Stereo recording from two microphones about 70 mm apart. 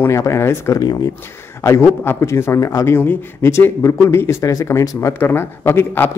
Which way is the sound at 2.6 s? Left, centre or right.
Left.